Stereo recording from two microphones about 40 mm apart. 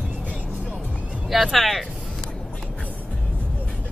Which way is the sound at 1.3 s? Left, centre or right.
Centre.